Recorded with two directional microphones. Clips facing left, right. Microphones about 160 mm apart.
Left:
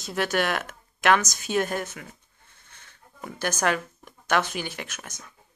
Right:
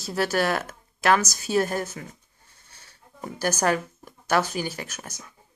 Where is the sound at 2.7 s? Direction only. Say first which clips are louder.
Right 1 dB; 35° right (ahead or behind).